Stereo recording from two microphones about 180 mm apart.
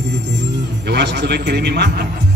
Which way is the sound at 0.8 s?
70° right (ahead or behind).